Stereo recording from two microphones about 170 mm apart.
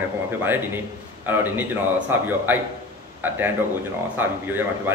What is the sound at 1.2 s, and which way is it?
A man's voice, 10° right (ahead or behind).